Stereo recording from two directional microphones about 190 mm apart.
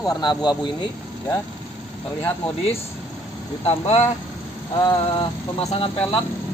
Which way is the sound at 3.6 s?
35° left (ahead or behind).